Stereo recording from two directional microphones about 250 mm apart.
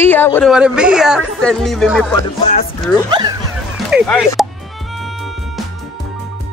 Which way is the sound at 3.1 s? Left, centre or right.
Centre.